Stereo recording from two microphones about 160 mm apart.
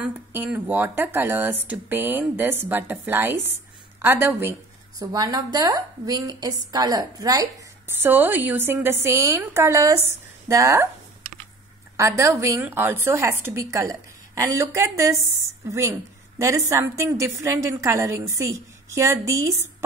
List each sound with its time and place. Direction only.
0.0 s a woman's voice: 10° right (ahead or behind)
12.0 s a woman's voice: 20° right (ahead or behind)